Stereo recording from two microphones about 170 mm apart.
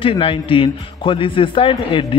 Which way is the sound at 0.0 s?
30° left (ahead or behind).